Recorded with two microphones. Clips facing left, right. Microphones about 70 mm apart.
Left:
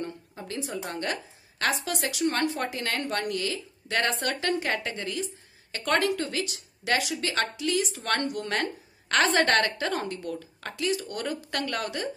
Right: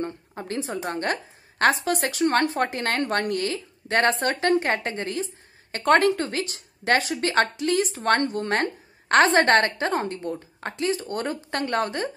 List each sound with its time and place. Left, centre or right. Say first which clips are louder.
0.0 s a woman's voice: right 5 dB; right